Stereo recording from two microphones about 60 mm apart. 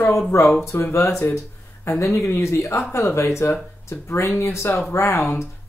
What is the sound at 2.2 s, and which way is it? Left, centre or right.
Speech, left.